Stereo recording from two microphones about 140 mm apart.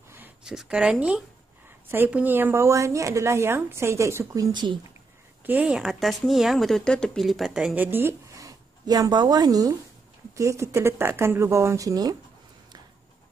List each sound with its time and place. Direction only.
0.4 s a woman's voice: 5° right (ahead or behind); by 4.7 s 30° right (ahead or behind)
5.4 s a woman's voice: 10° right (ahead or behind)